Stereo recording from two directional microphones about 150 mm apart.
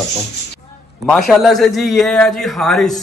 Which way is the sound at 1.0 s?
Centre (ahead or behind).